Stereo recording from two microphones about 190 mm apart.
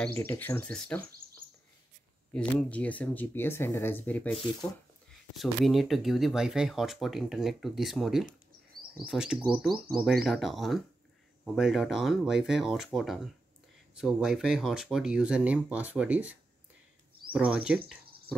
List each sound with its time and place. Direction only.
0.2 s speech: 10° left (ahead or behind)
2.7 s speech: 10° left (ahead or behind)